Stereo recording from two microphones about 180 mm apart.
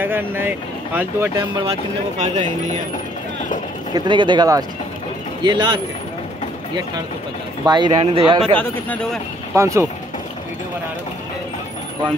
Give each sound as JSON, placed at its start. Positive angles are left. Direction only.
{"t": 0.0, "sound": "speech", "side_deg": -10}
{"t": 1.7, "sound": "speech", "side_deg": -40}
{"t": 3.9, "sound": "speech", "side_deg": -25}
{"t": 7.6, "sound": "speech", "side_deg": -25}
{"t": 8.5, "sound": "speech", "side_deg": 10}
{"t": 9.5, "sound": "speech", "side_deg": -15}